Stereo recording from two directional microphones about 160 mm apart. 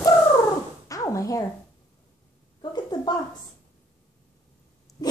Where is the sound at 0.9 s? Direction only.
20° left (ahead or behind).